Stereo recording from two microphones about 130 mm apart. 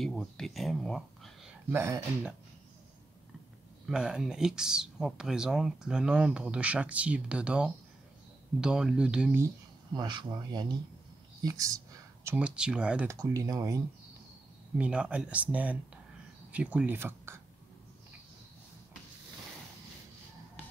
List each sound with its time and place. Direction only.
0.0 s speech: 5° left (ahead or behind)
1.7 s speech: 20° right (ahead or behind)
3.8 s speech: 5° right (ahead or behind)
9.9 s speech: 35° right (ahead or behind)
11.4 s a sound: 25° right (ahead or behind)
12.4 s speech: 10° right (ahead or behind)
13.1 s speech: 25° right (ahead or behind)
14.8 s speech: 10° right (ahead or behind)